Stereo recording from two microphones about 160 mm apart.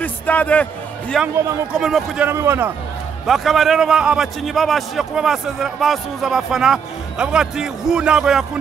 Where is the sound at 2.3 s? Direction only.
15° right (ahead or behind).